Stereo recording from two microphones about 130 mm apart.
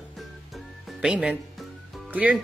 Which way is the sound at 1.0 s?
5° right (ahead or behind).